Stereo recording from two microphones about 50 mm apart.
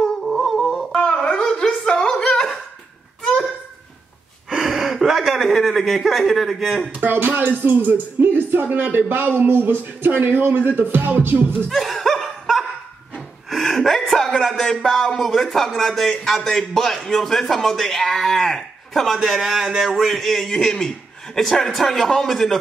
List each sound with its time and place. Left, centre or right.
0.0 s music: centre
0.9 s music: centre
1.3 s a sound: centre
4.5 s a sound: centre
6.9 s a man's voice: right
10.8 s music: right
11.7 s laughter: centre
13.5 s a sound: centre
15.0 s speech: centre